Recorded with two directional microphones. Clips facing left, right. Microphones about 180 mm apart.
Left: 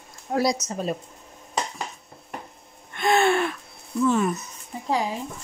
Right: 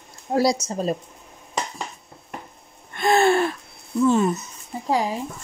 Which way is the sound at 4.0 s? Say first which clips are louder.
Right 3 dB; 30° right (ahead or behind).